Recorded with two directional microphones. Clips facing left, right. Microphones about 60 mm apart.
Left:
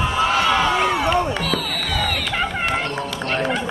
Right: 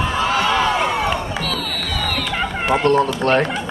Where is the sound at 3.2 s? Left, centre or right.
Right.